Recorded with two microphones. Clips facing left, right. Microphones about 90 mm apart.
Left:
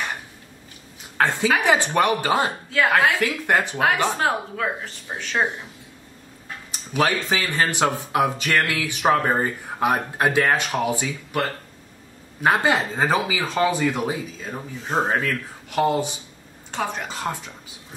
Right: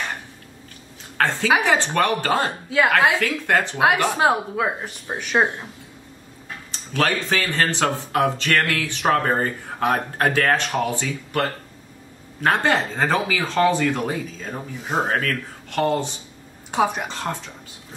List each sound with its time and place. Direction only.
1.1 s a woman's voice: 15° left (ahead or behind)
3.7 s a woman's voice: 15° right (ahead or behind)
6.7 s speech: 15° left (ahead or behind)
16.7 s a woman's voice: 15° right (ahead or behind)
17.1 s speech: 10° left (ahead or behind)